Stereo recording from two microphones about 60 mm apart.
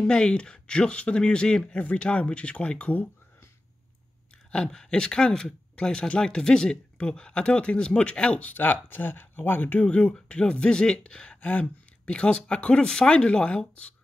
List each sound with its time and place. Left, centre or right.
0.0 s speech: centre
4.5 s speech: centre